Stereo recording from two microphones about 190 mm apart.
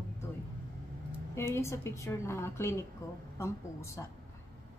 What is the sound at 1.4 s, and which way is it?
A woman's voice, 15° left (ahead or behind).